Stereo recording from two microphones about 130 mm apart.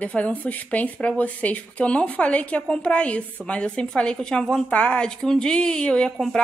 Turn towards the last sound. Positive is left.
turn(degrees=5)  # may be behind; listen again after turning